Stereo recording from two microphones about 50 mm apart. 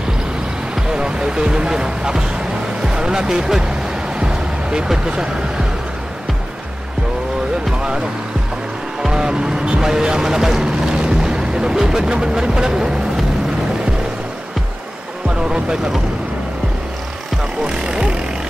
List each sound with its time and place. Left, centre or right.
0.7 s speech: centre
4.2 s vehicle: centre
9.0 s speech: centre
15.2 s speech: centre
17.6 s speech: centre